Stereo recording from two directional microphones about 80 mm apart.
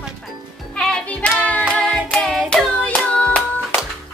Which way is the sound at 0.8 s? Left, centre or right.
Centre.